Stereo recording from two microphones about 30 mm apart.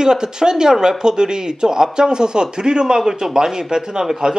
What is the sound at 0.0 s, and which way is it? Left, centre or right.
Speech, right.